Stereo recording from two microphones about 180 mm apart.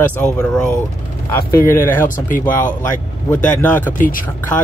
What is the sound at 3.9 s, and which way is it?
Speech, 50° left (ahead or behind).